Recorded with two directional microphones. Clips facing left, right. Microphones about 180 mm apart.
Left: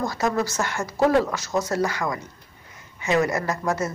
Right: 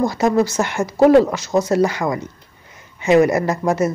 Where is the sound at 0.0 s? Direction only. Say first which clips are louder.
Right 8 dB; 20° right (ahead or behind).